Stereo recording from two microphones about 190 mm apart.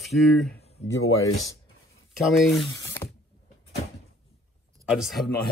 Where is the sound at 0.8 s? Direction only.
85° left.